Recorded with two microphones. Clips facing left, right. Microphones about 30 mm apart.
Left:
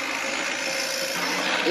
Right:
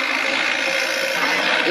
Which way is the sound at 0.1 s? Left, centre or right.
Right.